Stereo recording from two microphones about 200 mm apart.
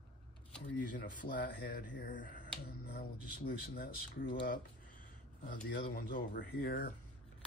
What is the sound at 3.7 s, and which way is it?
Speech, 45° left (ahead or behind).